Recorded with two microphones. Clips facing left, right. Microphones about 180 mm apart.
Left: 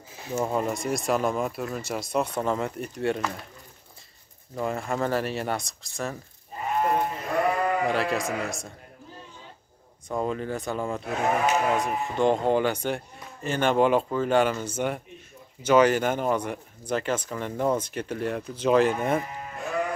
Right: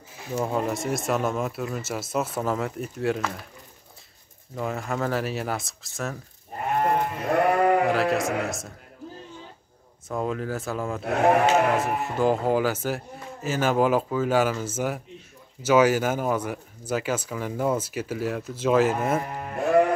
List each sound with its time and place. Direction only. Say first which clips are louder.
0.4 s speech: even; centre (ahead or behind)
4.6 s speech: left 1 dB; centre (ahead or behind)
6.6 s sheep: right 1 dB; 55° right (ahead or behind)
7.8 s speech: right 3 dB; centre (ahead or behind)
10.0 s speech: even; centre (ahead or behind)
11.1 s speech: right 6 dB; 60° right (ahead or behind)
11.8 s speech: right 1 dB; 5° right (ahead or behind)
19.2 s sheep: right 8 dB; 60° right (ahead or behind)